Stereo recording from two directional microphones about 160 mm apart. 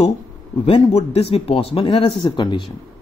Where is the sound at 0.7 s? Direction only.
40° left (ahead or behind).